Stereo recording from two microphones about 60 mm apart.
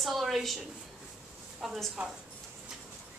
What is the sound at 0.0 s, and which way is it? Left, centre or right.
A woman's voice, centre.